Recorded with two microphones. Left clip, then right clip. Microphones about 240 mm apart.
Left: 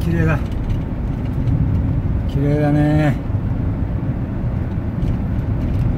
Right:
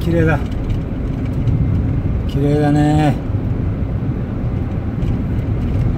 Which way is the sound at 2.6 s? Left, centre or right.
Right.